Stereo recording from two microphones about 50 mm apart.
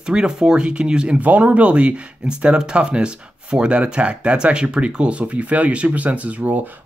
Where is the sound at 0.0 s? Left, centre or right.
Centre.